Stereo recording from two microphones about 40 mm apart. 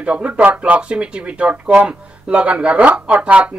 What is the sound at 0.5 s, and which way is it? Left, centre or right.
Speech, right.